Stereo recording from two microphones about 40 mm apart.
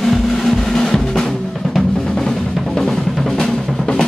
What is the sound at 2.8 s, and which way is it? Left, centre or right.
Drum, centre.